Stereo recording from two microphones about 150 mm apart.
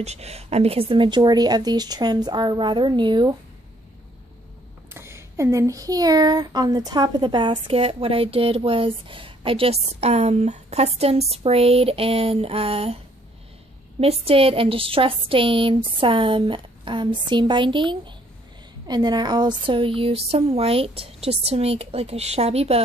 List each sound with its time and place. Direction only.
0.0 s speech: 45° right (ahead or behind)
4.9 s speech: 15° right (ahead or behind); by 22.8 s 45° right (ahead or behind)